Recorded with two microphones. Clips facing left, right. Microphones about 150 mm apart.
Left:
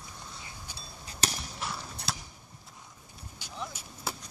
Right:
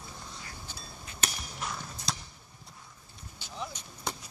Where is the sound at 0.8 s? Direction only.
35° left (ahead or behind).